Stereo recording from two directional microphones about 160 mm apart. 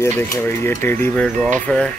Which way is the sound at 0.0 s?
15° left (ahead or behind).